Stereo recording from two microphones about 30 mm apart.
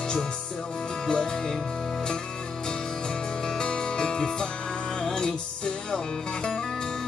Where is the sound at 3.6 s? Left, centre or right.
Left.